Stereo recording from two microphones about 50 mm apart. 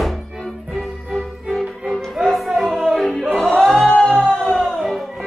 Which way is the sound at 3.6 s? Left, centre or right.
Centre.